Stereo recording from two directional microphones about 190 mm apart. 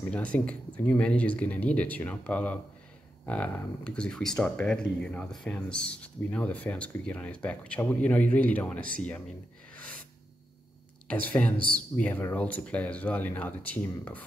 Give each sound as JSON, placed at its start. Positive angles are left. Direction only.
{"t": 0.1, "sound": "speech", "side_deg": 5}
{"t": 11.5, "sound": "a man's voice", "side_deg": -50}
{"t": 12.0, "sound": "speech", "side_deg": 10}